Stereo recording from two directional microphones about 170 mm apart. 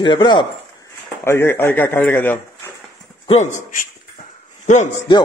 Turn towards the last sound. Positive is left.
turn(degrees=45)  # may be behind; listen again after turning